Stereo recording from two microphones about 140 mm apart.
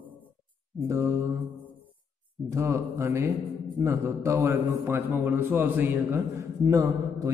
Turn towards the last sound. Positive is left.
turn(degrees=-25)  # may be behind; listen again after turning